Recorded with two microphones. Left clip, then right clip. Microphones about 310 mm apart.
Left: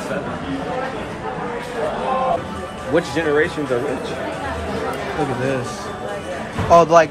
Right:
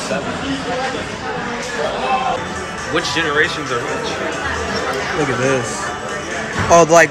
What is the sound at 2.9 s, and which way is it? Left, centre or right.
Speech, left.